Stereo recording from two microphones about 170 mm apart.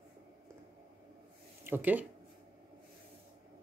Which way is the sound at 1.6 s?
10° right (ahead or behind).